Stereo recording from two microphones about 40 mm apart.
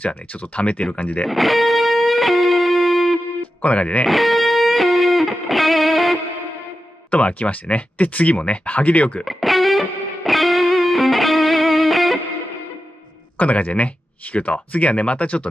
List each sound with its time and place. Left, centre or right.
0.1 s speech: left
0.9 s speech: left
1.2 s music: centre
3.6 s speech: left
4.0 s music: centre
7.1 s speech: left
9.2 s music: centre
13.4 s speech: left